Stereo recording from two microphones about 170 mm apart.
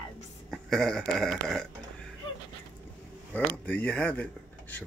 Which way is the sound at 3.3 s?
10° left (ahead or behind).